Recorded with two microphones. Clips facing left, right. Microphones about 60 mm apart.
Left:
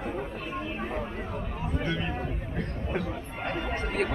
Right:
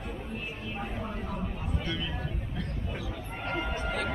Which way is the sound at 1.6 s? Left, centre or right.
Left.